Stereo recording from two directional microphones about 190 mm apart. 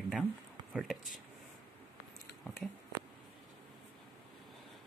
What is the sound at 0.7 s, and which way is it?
Speech, centre (ahead or behind).